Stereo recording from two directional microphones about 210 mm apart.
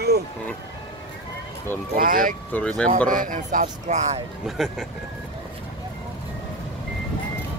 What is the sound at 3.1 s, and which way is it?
Speech, 40° right (ahead or behind).